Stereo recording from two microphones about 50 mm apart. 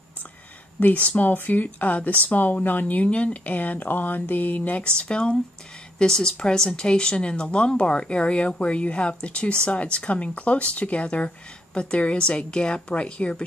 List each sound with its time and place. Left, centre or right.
0.7 s speech: left